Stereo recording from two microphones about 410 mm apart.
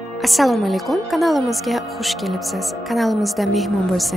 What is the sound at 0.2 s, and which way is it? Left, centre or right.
A woman's voice, centre.